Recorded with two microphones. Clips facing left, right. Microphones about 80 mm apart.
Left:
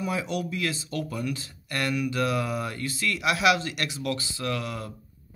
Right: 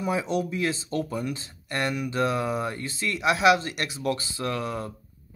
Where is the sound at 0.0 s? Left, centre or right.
Right.